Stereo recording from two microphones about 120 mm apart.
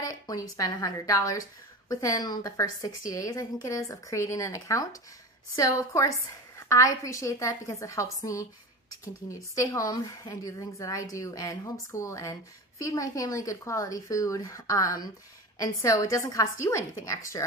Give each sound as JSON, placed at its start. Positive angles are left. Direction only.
{"t": 0.0, "sound": "a woman's voice", "side_deg": 30}